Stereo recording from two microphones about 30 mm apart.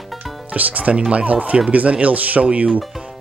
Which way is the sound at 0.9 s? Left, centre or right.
Right.